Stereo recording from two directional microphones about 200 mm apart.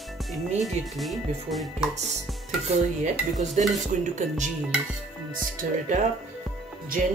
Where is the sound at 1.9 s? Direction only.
35° right (ahead or behind).